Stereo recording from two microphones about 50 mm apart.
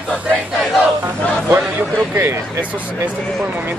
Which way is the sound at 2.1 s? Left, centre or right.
Right.